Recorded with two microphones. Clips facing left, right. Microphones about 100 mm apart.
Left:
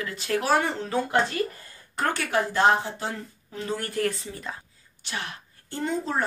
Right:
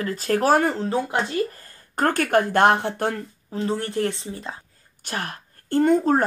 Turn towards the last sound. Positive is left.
turn(degrees=-55)  # may be behind; listen again after turning